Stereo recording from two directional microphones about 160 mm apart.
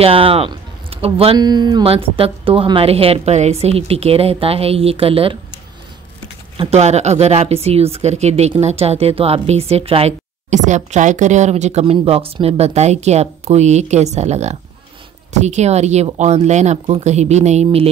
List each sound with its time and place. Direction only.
0.0 s speech: 35° right (ahead or behind)
6.5 s speech: 40° right (ahead or behind)